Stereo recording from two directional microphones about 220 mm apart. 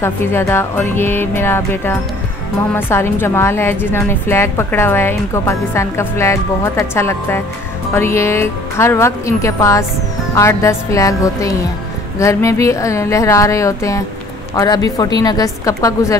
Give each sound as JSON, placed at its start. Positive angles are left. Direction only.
{"t": 0.0, "sound": "a woman's voice", "side_deg": 10}